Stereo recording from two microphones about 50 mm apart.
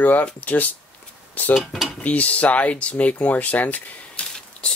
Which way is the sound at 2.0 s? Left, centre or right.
Left.